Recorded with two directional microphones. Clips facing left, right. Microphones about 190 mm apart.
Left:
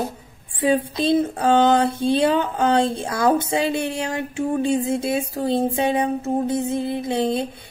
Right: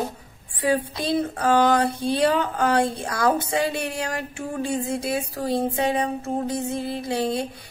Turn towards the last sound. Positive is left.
turn(degrees=25)  # may be behind; listen again after turning